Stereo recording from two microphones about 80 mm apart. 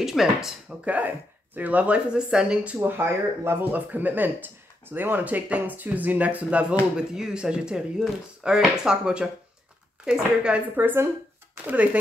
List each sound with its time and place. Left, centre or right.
0.0 s speech: centre
0.8 s speech: right
10.8 s speech: right